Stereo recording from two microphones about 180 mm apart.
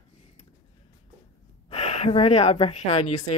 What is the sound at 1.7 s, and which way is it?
Speech, 35° left (ahead or behind).